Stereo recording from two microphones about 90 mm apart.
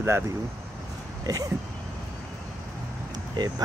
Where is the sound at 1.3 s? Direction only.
40° right (ahead or behind).